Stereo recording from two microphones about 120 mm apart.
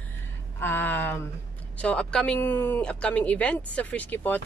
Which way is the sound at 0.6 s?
15° left (ahead or behind).